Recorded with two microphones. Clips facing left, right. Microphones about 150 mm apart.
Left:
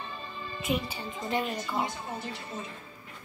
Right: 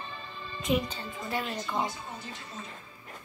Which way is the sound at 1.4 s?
5° left (ahead or behind).